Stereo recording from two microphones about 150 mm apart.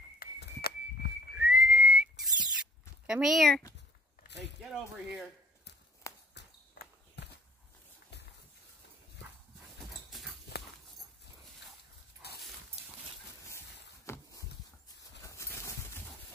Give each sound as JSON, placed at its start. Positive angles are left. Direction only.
{"t": 0.2, "sound": "a sound", "side_deg": 90}
{"t": 1.3, "sound": "whistling", "side_deg": -10}
{"t": 3.1, "sound": "speech", "side_deg": -5}
{"t": 6.0, "sound": "basketball bounce", "side_deg": 20}
{"t": 9.8, "sound": "dog", "side_deg": 0}
{"t": 15.2, "sound": "a sound", "side_deg": 20}